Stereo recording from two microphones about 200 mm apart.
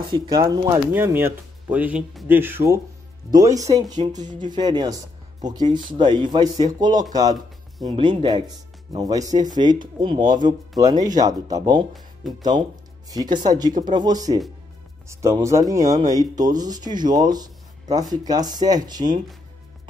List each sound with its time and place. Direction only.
0.0 s speech: 20° right (ahead or behind)
11.9 s speech: centre (ahead or behind)
13.1 s speech: 20° right (ahead or behind)